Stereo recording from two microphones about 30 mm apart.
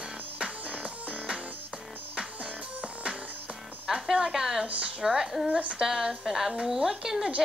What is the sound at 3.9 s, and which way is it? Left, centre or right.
Music, right.